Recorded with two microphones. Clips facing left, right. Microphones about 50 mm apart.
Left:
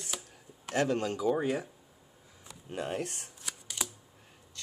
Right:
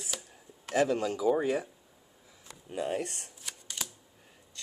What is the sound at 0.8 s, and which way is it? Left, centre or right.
Speech, left.